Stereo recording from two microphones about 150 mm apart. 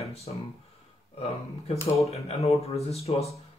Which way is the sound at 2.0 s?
45° left (ahead or behind).